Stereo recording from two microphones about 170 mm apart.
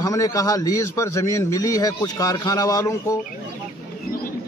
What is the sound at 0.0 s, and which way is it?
A man's voice, 20° left (ahead or behind).